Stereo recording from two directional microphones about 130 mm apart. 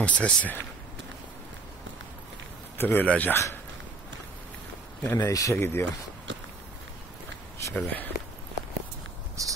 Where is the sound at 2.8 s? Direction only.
15° left (ahead or behind).